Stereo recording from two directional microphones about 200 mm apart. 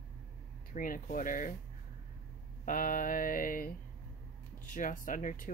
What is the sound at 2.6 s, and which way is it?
Speech, 40° left (ahead or behind).